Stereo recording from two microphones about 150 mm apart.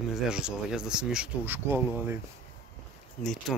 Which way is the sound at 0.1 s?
5° right (ahead or behind).